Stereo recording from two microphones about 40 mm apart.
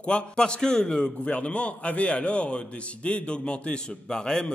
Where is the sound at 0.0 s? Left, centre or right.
Left.